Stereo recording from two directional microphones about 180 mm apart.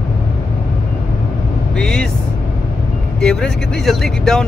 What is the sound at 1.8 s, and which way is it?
Vehicle, 5° left (ahead or behind).